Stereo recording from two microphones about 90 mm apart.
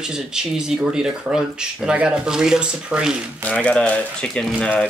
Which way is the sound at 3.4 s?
15° left (ahead or behind).